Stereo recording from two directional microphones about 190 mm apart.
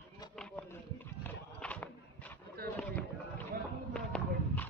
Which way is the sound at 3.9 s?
5° left (ahead or behind).